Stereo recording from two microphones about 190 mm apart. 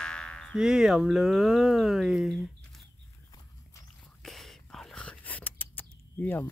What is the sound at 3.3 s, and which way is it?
Horse, 15° left (ahead or behind).